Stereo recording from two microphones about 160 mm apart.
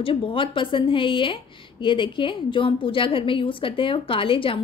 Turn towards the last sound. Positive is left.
turn(degrees=35)  # may be behind; listen again after turning